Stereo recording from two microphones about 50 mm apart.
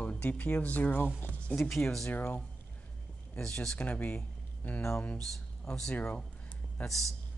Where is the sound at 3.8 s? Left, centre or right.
Left.